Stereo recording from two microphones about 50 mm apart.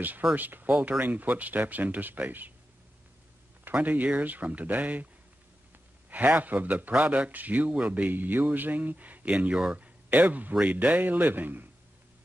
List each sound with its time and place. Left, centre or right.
0.4 s speech: right
3.7 s speech: right
6.0 s speech: right